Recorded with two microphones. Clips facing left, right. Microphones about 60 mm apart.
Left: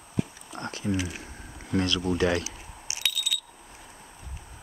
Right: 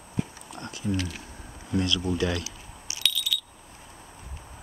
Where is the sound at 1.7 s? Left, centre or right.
Left.